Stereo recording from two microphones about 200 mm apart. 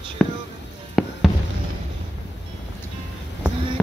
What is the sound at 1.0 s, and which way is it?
Fireworks, centre (ahead or behind).